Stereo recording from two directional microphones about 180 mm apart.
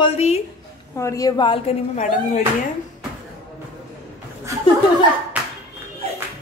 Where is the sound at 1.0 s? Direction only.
20° left (ahead or behind); by 2.4 s 35° left (ahead or behind).